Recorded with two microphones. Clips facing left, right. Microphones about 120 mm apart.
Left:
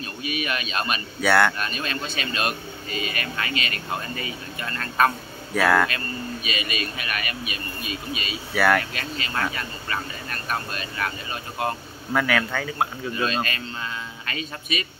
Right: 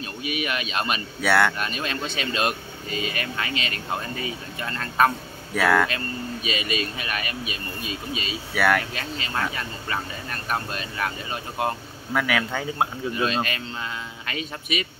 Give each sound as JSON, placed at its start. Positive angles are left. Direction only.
{"t": 0.0, "sound": "speech", "side_deg": -20}
{"t": 1.2, "sound": "speech", "side_deg": 0}
{"t": 1.6, "sound": "speech", "side_deg": -20}
{"t": 5.5, "sound": "speech", "side_deg": 0}
{"t": 6.4, "sound": "speech", "side_deg": -25}
{"t": 8.5, "sound": "speech", "side_deg": 0}
{"t": 8.9, "sound": "a man's voice", "side_deg": -20}
{"t": 12.1, "sound": "a man's voice", "side_deg": -5}